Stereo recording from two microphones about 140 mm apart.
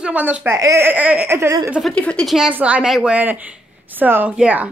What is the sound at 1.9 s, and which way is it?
A woman's voice, 5° left (ahead or behind).